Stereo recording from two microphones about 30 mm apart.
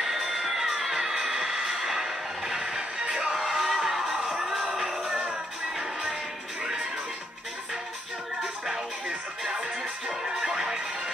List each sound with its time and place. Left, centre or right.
0.3 s music: centre
1.2 s music: right
1.7 s a sound: centre
3.3 s music: centre
5.1 s music: right
6.6 s music: right
9.0 s music: right